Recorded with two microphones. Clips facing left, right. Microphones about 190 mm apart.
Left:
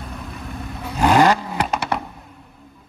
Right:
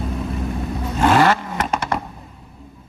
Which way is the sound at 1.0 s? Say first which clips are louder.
Left 1 dB; 15° left (ahead or behind).